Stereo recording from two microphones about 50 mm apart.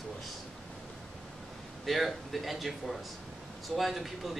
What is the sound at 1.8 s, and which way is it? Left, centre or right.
Speech, centre.